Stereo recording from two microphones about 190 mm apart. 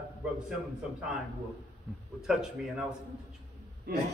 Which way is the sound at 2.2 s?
Centre (ahead or behind).